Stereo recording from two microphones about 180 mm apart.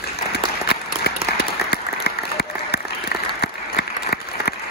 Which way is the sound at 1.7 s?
60° left (ahead or behind).